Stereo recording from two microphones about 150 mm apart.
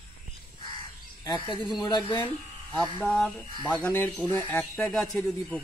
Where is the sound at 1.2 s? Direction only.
30° left (ahead or behind).